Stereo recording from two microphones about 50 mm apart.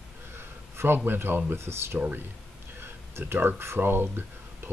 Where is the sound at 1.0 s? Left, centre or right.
Right.